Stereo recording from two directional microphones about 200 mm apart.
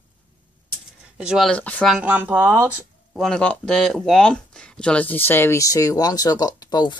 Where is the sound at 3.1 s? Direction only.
5° left (ahead or behind).